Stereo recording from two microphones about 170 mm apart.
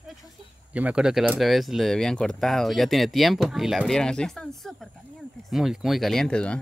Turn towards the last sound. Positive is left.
turn(degrees=5)  # may be behind; listen again after turning